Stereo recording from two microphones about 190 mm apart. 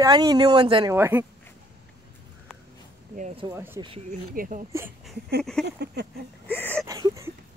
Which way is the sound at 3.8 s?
30° right (ahead or behind).